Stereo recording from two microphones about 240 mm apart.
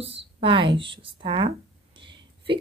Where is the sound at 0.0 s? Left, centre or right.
Right.